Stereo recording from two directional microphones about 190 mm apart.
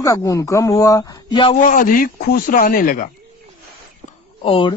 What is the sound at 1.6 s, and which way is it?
Speech, 45° left (ahead or behind).